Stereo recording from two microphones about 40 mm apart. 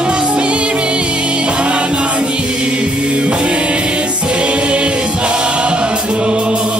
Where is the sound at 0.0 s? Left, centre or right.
Right.